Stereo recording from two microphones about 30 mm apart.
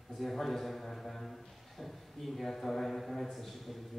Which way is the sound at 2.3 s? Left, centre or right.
Centre.